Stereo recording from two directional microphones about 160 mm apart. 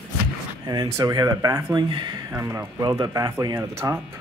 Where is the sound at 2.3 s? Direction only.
20° right (ahead or behind).